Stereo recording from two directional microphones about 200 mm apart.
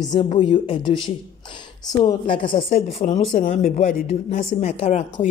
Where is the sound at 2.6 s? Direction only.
40° left (ahead or behind).